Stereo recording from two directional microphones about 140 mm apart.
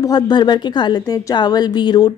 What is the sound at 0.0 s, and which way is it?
Speech, 30° left (ahead or behind).